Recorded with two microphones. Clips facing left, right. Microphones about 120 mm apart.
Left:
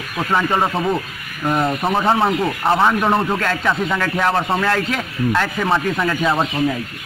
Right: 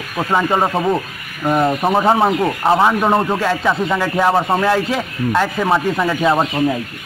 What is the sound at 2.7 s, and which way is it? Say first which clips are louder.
A man's voice: right 2 dB; 5° right (ahead or behind).